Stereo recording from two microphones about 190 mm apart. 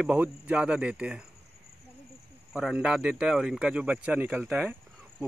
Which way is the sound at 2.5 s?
5° right (ahead or behind).